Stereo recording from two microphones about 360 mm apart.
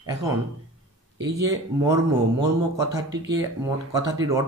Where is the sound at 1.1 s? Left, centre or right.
Right.